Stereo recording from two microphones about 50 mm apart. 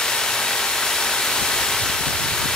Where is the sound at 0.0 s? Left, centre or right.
Centre.